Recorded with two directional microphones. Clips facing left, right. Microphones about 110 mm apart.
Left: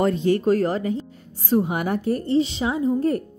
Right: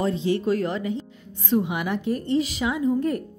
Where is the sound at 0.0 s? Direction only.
50° left (ahead or behind).